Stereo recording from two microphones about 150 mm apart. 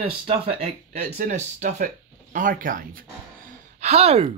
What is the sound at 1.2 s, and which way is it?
Speech, 55° right (ahead or behind).